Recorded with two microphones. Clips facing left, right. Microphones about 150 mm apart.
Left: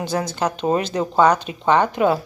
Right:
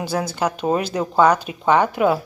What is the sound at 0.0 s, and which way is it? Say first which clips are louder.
Speech: even; 5° right (ahead or behind).